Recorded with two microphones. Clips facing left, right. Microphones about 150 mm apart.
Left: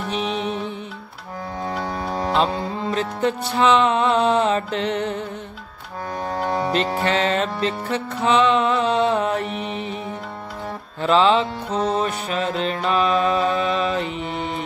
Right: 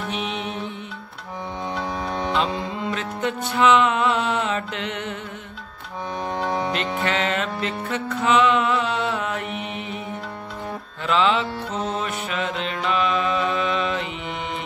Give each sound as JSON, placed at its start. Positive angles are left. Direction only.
{"t": 0.1, "sound": "music", "side_deg": 35}
{"t": 1.8, "sound": "music", "side_deg": 0}
{"t": 2.3, "sound": "music", "side_deg": 35}
{"t": 6.3, "sound": "music", "side_deg": 0}
{"t": 6.7, "sound": "music", "side_deg": 35}
{"t": 11.0, "sound": "music", "side_deg": 35}